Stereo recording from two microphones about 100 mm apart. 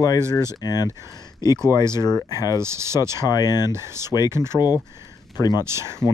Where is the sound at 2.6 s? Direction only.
25° right (ahead or behind).